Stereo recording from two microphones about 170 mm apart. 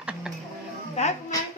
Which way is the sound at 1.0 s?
40° left (ahead or behind).